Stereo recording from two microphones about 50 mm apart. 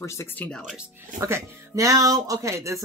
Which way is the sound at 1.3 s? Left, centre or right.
Right.